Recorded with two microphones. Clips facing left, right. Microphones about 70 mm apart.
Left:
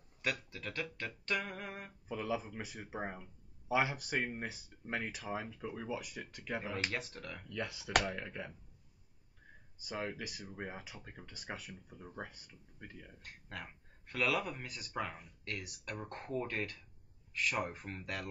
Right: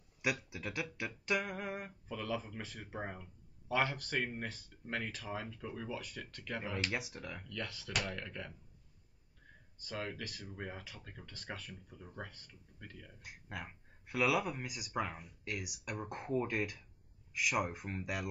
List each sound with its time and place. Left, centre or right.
0.2 s speech: centre
2.0 s speech: centre
6.9 s speech: centre
7.4 s speech: centre
9.8 s speech: centre
13.2 s speech: centre